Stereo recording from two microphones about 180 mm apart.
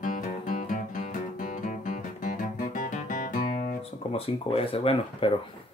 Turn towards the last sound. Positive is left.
turn(degrees=30)  # may be behind; listen again after turning